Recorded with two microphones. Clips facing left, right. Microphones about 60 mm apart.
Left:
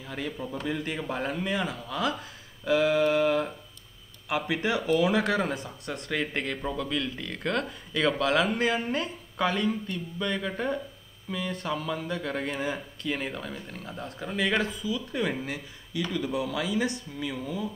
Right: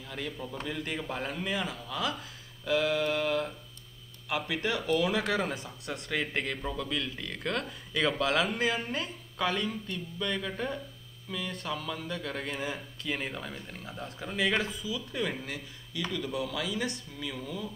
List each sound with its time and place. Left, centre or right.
0.0 s speech: centre
12.6 s speech: centre